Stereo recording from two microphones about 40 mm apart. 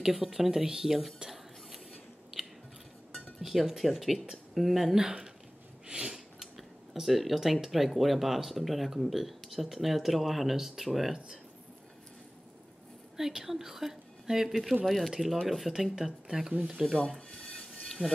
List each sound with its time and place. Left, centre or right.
0.0 s speech: centre
3.3 s speech: centre
4.9 s a woman's voice: centre
5.9 s a sound: right
6.4 s a sound: centre
7.6 s speech: centre
13.2 s a woman's voice: centre
17.3 s drip: centre
17.8 s music: centre